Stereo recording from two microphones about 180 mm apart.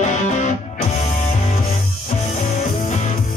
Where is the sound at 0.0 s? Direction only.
40° left (ahead or behind).